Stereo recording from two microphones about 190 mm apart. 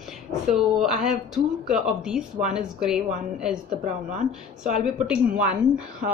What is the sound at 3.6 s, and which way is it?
Speech, 40° right (ahead or behind).